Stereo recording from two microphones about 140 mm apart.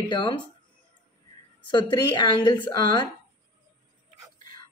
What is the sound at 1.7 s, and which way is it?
Speech, 30° left (ahead or behind).